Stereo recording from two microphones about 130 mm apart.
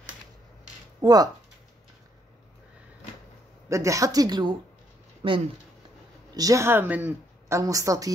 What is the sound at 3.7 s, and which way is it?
Speech, 25° right (ahead or behind).